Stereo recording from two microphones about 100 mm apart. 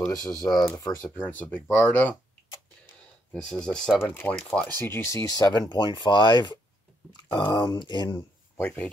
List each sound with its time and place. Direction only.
0.1 s speech: 35° left (ahead or behind)
1.0 s speech: 15° left (ahead or behind)
3.4 s speech: 5° left (ahead or behind)
4.0 s speech: 20° left (ahead or behind)
4.7 s speech: 25° left (ahead or behind)
5.7 s speech: 50° left (ahead or behind)
8.5 s speech: 15° left (ahead or behind)